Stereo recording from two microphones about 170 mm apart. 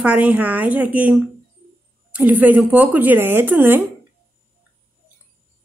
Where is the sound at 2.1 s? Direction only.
10° right (ahead or behind).